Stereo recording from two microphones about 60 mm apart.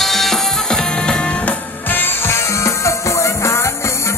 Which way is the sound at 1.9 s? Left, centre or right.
Left.